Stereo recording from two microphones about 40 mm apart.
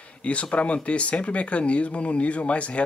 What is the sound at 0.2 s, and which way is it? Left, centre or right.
Speech, left.